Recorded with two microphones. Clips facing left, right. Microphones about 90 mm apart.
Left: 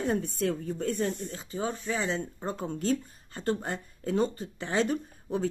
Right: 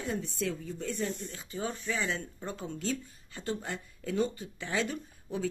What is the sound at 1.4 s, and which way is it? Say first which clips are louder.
Speech: left 3 dB; 30° left (ahead or behind).